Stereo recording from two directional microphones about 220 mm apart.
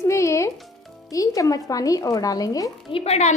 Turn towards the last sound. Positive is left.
turn(degrees=30)  # may be behind; listen again after turning